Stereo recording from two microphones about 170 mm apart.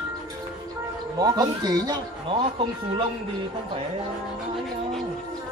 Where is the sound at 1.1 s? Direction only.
25° right (ahead or behind).